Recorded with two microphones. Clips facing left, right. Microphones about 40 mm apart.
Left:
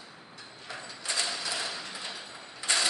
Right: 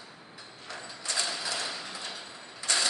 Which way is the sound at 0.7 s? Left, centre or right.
Centre.